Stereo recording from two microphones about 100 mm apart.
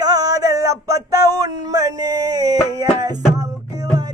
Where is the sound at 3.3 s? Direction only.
40° right (ahead or behind).